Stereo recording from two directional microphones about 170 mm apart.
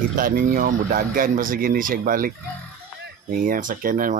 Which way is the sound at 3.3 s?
50° right (ahead or behind).